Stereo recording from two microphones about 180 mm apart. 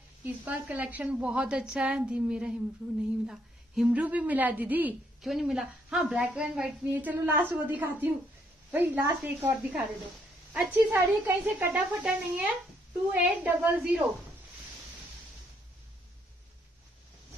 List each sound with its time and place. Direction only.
0.2 s a woman's voice: 10° right (ahead or behind)